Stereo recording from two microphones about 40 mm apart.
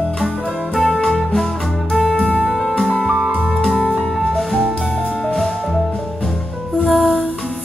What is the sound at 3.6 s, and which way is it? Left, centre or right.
Music, centre.